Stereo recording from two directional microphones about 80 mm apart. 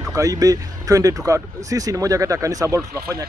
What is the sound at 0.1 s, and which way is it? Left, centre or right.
Speech, right.